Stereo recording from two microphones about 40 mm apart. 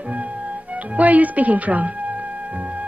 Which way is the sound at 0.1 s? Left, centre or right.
Right.